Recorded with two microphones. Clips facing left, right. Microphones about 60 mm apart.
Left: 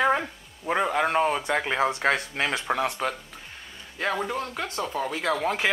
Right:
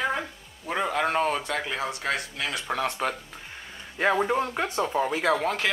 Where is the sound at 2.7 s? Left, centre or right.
Centre.